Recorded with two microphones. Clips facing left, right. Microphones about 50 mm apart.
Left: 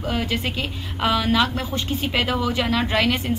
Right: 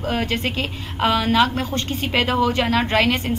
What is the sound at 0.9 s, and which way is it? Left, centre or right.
Speech, centre.